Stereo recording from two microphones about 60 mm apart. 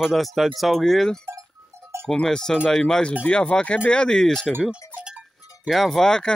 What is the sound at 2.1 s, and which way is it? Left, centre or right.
Speech, centre.